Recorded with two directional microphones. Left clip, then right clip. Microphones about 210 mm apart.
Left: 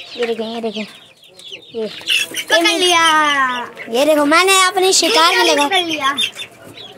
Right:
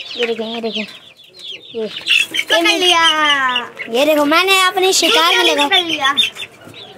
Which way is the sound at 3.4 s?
10° left (ahead or behind).